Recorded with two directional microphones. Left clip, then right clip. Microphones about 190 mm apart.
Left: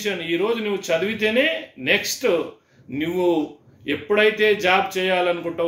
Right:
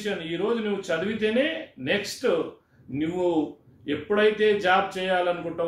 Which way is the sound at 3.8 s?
15° left (ahead or behind).